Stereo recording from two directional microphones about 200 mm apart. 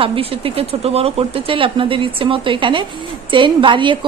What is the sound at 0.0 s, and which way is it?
Speech, 30° right (ahead or behind).